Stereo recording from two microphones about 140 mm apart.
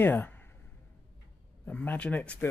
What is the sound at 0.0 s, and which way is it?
Speech, 15° left (ahead or behind).